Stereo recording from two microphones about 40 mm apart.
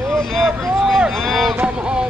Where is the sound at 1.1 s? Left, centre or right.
Centre.